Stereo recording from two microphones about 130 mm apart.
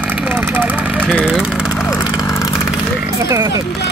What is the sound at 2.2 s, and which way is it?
Vehicle, 20° left (ahead or behind).